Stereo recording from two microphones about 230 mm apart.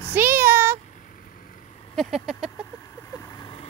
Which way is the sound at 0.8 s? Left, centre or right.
Left.